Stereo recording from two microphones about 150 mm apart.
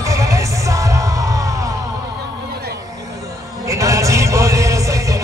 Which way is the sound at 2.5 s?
90° right.